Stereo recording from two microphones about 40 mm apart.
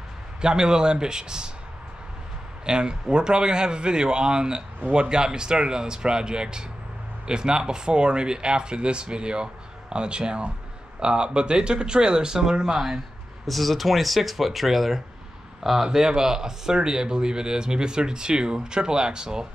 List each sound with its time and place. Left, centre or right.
0.4 s speech: centre
2.6 s speech: right
13.5 s speech: centre